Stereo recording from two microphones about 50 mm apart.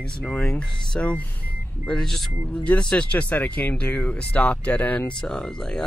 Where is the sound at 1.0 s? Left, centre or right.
Left.